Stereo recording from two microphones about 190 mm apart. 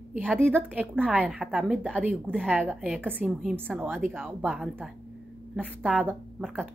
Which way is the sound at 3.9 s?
Centre (ahead or behind).